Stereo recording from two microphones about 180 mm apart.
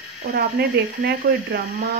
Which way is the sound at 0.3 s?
60° right (ahead or behind).